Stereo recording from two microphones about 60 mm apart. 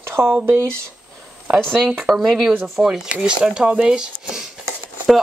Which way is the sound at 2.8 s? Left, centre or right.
Centre.